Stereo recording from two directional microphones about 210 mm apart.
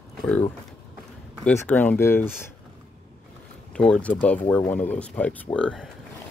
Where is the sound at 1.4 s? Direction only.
10° left (ahead or behind).